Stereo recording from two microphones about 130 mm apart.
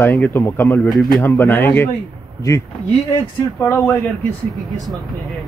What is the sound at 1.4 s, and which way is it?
A man's voice, 15° left (ahead or behind).